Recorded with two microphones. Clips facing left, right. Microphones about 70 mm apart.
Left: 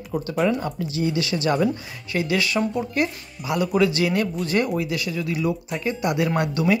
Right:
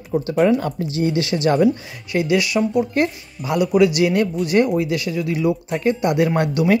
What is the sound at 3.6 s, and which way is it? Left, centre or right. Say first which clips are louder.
Speech: right 5 dB; centre.